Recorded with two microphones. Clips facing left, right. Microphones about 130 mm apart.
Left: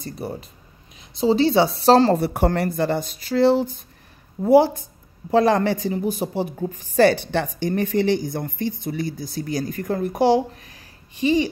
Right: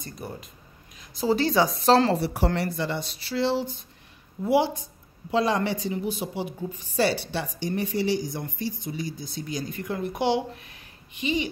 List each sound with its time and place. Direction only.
0.0 s speech: 40° left (ahead or behind)
1.1 s a woman's voice: 25° left (ahead or behind)
2.1 s a woman's voice: 50° left (ahead or behind); by 11.3 s 35° left (ahead or behind)